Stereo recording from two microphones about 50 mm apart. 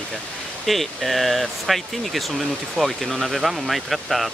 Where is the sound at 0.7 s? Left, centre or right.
Centre.